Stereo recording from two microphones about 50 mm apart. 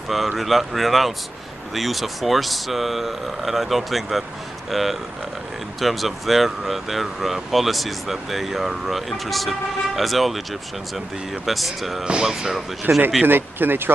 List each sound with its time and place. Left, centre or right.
0.1 s speech: centre
11.4 s speech: centre
12.0 s speech: centre
12.9 s speech: right
13.2 s speech: right